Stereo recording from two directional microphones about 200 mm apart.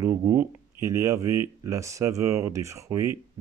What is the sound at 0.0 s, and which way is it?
Speech, 10° right (ahead or behind).